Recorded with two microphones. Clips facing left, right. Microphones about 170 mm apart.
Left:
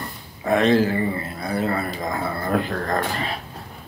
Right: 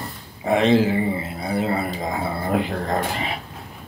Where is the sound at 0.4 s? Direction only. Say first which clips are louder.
Even; 15° right (ahead or behind).